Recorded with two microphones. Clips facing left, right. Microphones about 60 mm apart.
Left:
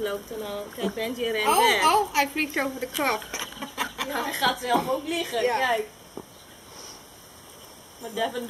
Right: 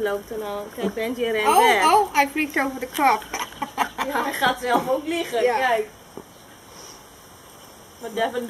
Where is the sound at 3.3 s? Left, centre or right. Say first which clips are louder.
Right 6 dB; right.